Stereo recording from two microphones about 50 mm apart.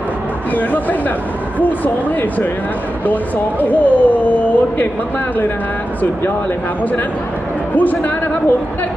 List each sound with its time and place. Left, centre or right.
0.6 s speech: left
3.1 s speech: left
7.7 s speech: left